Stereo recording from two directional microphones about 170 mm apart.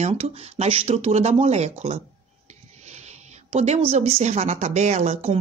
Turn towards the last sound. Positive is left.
turn(degrees=-40)  # may be behind; listen again after turning